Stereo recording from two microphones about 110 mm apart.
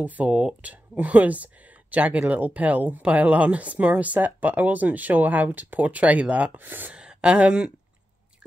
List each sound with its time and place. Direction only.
0.0 s speech: 15° right (ahead or behind)